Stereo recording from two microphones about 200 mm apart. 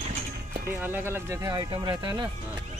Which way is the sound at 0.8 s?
10° right (ahead or behind).